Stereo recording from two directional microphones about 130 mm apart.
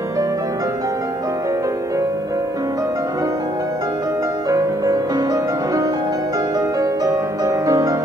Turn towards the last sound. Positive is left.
turn(degrees=-25)  # may be behind; listen again after turning